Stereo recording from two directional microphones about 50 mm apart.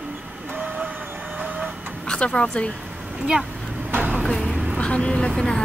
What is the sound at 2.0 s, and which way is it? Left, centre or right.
Speech, left.